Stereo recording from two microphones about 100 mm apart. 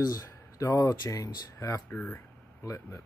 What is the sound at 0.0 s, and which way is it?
Speech, 35° left (ahead or behind).